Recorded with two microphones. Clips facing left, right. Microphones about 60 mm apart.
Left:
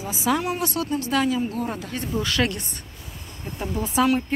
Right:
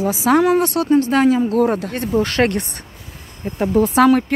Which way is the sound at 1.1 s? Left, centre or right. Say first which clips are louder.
Right 8 dB; right.